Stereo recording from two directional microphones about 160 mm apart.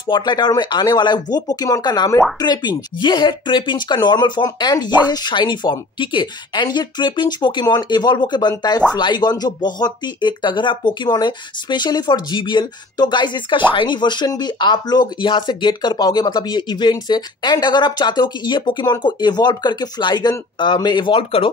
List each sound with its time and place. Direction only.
0.0 s speech: 25° left (ahead or behind)